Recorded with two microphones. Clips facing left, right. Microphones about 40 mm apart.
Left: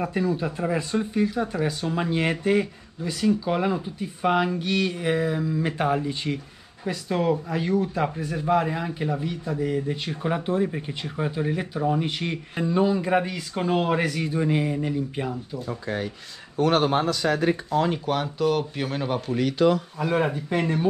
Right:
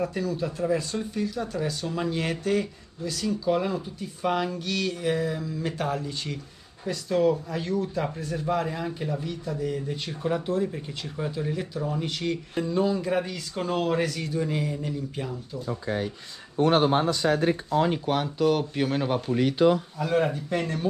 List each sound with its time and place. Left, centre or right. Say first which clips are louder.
0.0 s a man's voice: left 3 dB; left
16.5 s speech: even; left
17.9 s speech: even; centre
20.0 s speech: left 1 dB; centre